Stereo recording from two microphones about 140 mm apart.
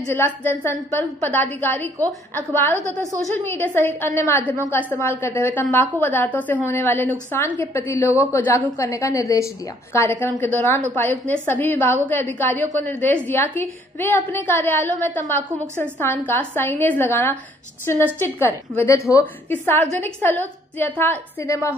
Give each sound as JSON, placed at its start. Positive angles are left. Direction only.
{"t": 0.1, "sound": "a woman's voice", "side_deg": 15}
{"t": 2.0, "sound": "a woman's voice", "side_deg": -25}
{"t": 3.4, "sound": "a woman's voice", "side_deg": 15}